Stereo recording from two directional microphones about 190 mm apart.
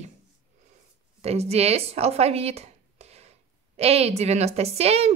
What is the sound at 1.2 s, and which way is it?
A woman's voice, 35° right (ahead or behind).